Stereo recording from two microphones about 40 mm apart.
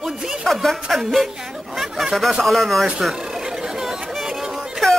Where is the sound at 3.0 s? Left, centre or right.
Centre.